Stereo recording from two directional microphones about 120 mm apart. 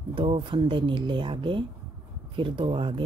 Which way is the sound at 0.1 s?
45° right (ahead or behind).